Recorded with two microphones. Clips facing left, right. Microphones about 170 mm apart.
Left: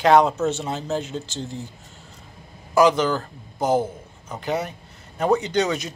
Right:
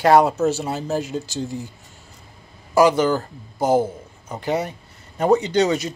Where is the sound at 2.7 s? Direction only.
10° right (ahead or behind).